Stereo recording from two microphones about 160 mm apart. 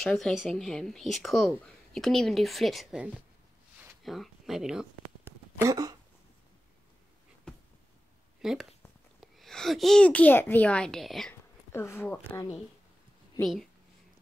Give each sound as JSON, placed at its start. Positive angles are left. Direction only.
{"t": 0.0, "sound": "a child's voice", "side_deg": 0}
{"t": 5.2, "sound": "a sound", "side_deg": -20}
{"t": 7.5, "sound": "a sound", "side_deg": 5}
{"t": 8.4, "sound": "a child's voice", "side_deg": 0}
{"t": 11.7, "sound": "speech", "side_deg": 15}
{"t": 13.4, "sound": "a child's voice", "side_deg": 0}